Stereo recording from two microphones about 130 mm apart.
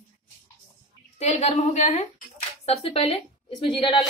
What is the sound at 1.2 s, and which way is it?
A woman's voice, 55° left (ahead or behind).